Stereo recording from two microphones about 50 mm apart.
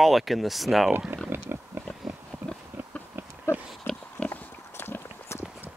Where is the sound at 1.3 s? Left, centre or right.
Right.